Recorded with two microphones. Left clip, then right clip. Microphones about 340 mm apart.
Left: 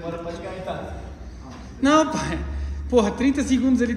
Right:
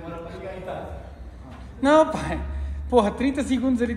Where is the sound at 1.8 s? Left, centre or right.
Centre.